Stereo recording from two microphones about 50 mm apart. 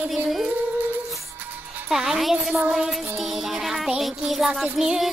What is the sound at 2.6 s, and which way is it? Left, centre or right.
Music, right.